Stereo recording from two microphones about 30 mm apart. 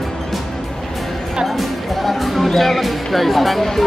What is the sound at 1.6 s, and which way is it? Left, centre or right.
Music, centre.